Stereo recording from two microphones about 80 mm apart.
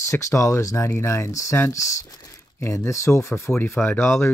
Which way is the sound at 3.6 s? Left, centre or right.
Left.